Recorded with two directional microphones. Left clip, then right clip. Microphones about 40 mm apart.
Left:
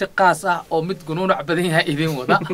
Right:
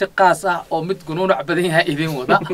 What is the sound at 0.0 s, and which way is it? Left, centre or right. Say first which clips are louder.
Speech: right 2 dB; left.